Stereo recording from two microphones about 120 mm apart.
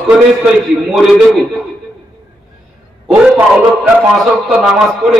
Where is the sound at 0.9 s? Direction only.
Centre (ahead or behind).